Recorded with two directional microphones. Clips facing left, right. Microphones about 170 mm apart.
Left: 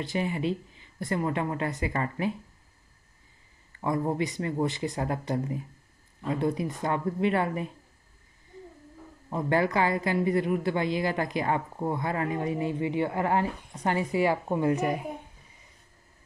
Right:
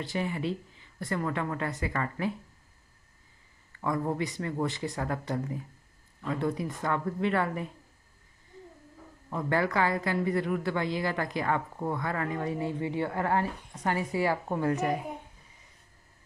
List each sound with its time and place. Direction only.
0.0 s a woman's voice: 20° left (ahead or behind)
3.8 s a woman's voice: 25° left (ahead or behind)
9.3 s speech: 20° left (ahead or behind)